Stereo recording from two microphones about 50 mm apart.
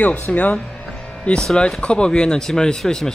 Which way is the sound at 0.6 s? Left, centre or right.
Centre.